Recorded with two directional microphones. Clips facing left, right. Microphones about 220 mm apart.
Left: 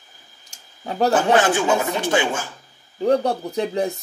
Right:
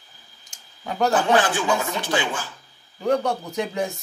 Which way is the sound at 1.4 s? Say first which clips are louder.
Left 4 dB; 45° left (ahead or behind).